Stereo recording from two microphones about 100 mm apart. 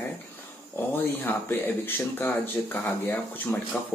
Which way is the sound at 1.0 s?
20° left (ahead or behind).